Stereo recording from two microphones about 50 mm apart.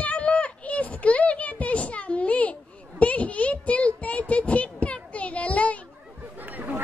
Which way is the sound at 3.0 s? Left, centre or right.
Left.